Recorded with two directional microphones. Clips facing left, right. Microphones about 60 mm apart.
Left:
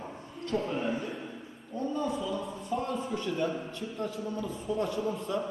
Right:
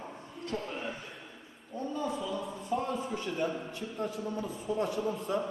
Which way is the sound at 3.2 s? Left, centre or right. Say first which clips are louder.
Left 2 dB; centre.